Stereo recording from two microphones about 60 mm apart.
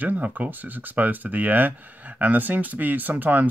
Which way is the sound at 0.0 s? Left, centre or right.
Right.